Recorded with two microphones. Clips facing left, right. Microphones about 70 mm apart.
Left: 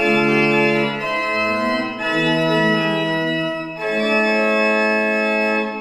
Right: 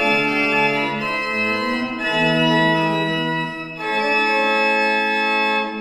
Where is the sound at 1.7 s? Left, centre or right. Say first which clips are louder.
Left 1 dB; left.